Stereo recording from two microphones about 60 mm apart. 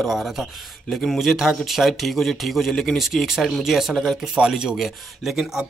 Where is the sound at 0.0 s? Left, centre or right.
Centre.